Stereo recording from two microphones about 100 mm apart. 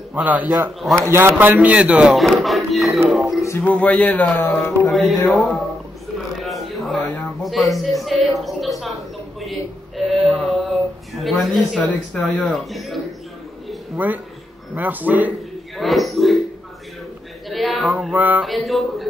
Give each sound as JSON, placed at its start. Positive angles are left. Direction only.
{"t": 0.1, "sound": "speech", "side_deg": -15}
{"t": 3.4, "sound": "speech", "side_deg": 20}
{"t": 4.8, "sound": "speech", "side_deg": 0}
{"t": 6.1, "sound": "a sound", "side_deg": 0}
{"t": 7.4, "sound": "speech", "side_deg": 0}
{"t": 10.0, "sound": "a sound", "side_deg": 0}
{"t": 11.1, "sound": "speech", "side_deg": 0}
{"t": 13.9, "sound": "speech", "side_deg": -15}
{"t": 15.8, "sound": "a sound", "side_deg": 0}
{"t": 17.5, "sound": "a sound", "side_deg": 0}
{"t": 18.1, "sound": "speech", "side_deg": -15}
{"t": 18.4, "sound": "speech", "side_deg": 0}